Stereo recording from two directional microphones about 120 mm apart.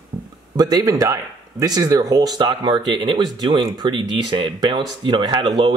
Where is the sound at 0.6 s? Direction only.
35° right (ahead or behind).